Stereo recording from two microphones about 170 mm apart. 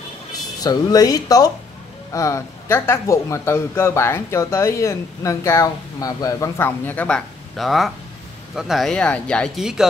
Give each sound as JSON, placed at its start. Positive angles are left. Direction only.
{"t": 0.4, "sound": "a man's voice", "side_deg": 20}